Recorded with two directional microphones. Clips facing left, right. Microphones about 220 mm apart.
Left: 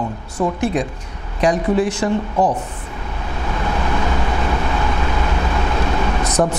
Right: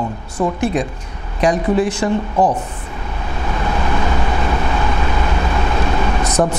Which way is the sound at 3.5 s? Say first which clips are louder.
Right 1 dB; 20° right (ahead or behind).